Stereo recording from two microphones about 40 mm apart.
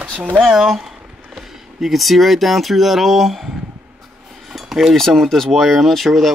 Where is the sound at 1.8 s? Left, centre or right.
Centre.